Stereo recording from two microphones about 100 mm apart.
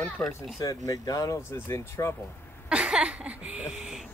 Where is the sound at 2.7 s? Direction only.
10° right (ahead or behind).